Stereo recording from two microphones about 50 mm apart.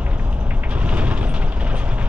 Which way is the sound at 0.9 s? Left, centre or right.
Right.